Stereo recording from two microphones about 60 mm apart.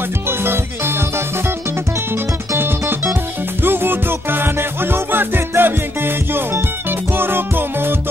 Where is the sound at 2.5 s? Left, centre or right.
Right.